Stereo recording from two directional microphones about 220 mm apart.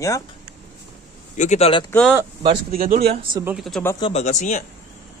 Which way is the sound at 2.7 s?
40° right (ahead or behind).